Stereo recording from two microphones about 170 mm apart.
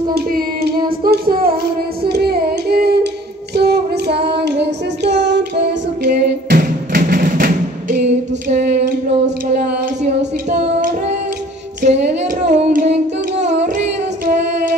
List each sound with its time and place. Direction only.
0.1 s child singing: 65° right (ahead or behind)
2.0 s child singing: 70° right (ahead or behind); by 5.8 s 90° right
6.0 s music: 55° right (ahead or behind)
8.5 s female singing: 45° right (ahead or behind)
11.8 s female singing: 40° right (ahead or behind)
13.7 s singing: 45° right (ahead or behind)